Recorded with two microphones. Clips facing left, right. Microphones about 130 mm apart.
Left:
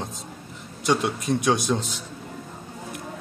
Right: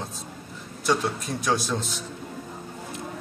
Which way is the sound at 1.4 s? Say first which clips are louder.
Even; 20° left (ahead or behind).